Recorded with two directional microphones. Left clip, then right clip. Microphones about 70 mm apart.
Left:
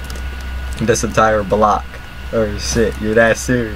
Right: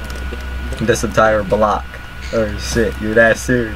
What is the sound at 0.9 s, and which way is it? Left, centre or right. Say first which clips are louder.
Speech: even; centre.